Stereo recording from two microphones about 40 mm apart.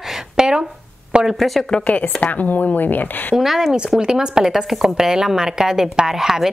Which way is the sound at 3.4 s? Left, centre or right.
Centre.